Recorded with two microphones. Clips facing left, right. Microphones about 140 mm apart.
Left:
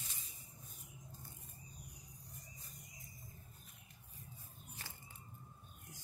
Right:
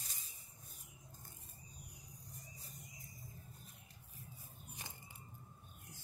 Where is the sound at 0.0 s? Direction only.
40° right (ahead or behind).